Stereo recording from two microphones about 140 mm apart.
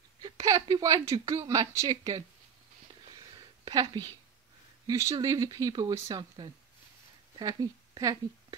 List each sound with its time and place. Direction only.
0.2 s a sound: 25° right (ahead or behind)
0.7 s speech: 25° right (ahead or behind)
4.8 s speech: 25° right (ahead or behind)